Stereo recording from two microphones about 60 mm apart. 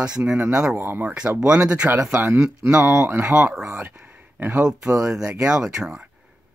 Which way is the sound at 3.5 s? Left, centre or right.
Centre.